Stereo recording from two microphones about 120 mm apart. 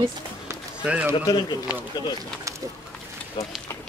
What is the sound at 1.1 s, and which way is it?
Speech, 35° left (ahead or behind).